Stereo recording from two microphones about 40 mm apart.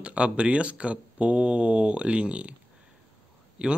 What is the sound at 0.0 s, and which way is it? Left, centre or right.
Speech, right.